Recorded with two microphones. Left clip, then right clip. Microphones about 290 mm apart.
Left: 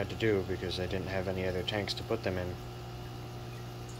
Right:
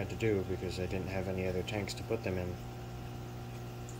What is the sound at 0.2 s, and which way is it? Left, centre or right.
Speech, centre.